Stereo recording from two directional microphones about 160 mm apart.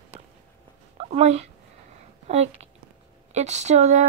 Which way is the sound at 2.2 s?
45° right (ahead or behind).